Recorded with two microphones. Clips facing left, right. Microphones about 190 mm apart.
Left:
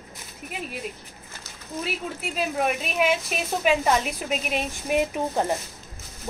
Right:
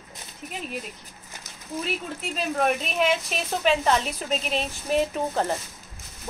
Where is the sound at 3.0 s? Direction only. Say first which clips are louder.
Left 2 dB; 10° left (ahead or behind).